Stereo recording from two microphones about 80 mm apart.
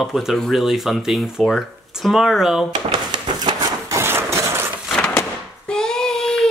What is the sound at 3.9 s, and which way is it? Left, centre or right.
Engine, right.